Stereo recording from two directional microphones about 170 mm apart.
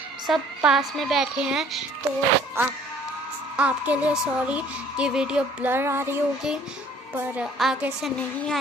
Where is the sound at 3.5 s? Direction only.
10° right (ahead or behind).